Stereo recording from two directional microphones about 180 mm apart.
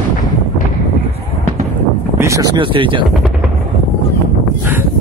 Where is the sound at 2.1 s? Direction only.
15° right (ahead or behind).